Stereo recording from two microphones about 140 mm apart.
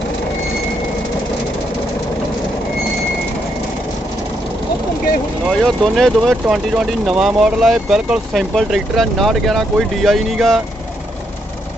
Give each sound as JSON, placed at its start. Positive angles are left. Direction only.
{"t": 5.7, "sound": "speech", "side_deg": 0}